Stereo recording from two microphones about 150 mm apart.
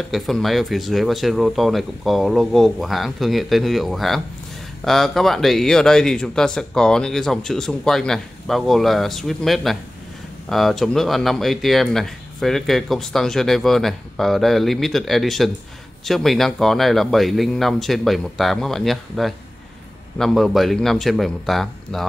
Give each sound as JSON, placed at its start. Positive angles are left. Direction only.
{"t": 0.1, "sound": "speech", "side_deg": 0}